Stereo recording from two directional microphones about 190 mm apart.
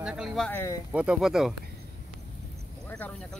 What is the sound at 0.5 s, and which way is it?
Speech, 10° left (ahead or behind).